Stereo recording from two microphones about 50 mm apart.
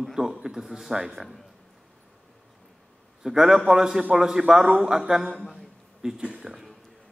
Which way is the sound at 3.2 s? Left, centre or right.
Centre.